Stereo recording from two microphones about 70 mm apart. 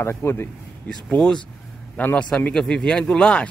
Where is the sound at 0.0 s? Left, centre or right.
Left.